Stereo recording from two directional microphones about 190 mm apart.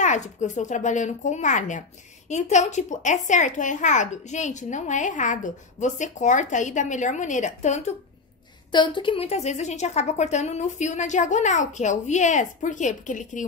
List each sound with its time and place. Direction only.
0.0 s speech: 40° left (ahead or behind)
8.7 s speech: 25° left (ahead or behind); by 13.5 s 40° left (ahead or behind)